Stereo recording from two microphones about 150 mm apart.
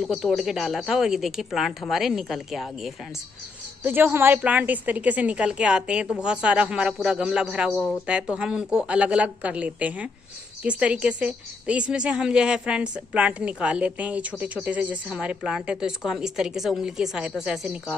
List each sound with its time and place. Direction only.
0.0 s a woman's voice: centre (ahead or behind)
3.8 s a woman's voice: 15° right (ahead or behind)
7.7 s speech: 15° left (ahead or behind)
8.1 s a woman's voice: 5° right (ahead or behind)